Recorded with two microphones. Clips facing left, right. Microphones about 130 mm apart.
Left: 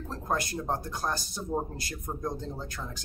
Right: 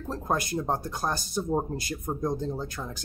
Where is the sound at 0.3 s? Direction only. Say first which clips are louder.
Right 3 dB; 15° right (ahead or behind).